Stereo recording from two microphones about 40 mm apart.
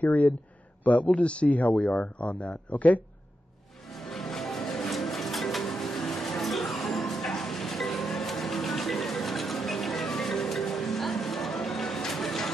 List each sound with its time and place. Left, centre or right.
0.0 s speech: left
1.1 s a man's voice: left
3.9 s music: centre